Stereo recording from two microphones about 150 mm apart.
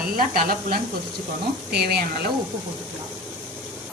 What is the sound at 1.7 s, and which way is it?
Speech, 90° right.